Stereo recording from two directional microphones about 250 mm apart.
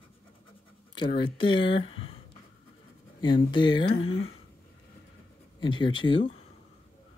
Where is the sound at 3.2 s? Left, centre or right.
Centre.